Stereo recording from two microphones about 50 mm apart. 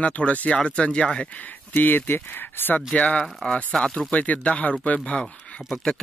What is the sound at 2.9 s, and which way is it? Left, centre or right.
Speech, left.